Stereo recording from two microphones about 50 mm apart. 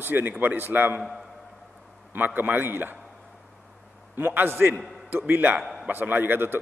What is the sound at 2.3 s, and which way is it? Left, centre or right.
Speech, right.